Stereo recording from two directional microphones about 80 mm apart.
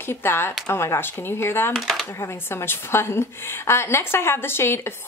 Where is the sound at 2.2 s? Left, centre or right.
Left.